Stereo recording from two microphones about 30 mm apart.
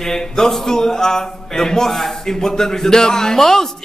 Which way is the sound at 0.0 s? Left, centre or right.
Centre.